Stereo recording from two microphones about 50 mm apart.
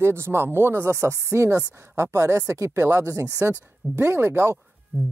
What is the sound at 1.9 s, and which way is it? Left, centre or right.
Speech, right.